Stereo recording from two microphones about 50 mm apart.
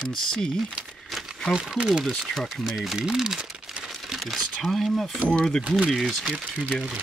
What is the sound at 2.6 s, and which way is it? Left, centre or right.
Speech, centre.